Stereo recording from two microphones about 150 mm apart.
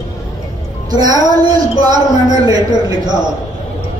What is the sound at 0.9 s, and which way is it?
A woman's voice, 25° right (ahead or behind).